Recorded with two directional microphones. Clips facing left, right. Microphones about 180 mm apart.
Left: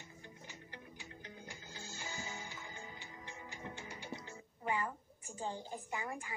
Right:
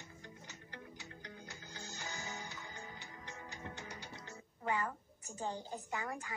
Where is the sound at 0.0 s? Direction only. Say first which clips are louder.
Right 1 dB; 20° left (ahead or behind).